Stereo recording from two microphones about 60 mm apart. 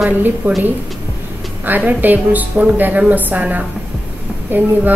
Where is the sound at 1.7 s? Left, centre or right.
Right.